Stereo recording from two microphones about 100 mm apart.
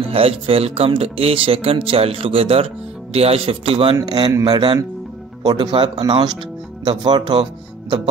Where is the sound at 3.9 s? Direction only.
45° right (ahead or behind).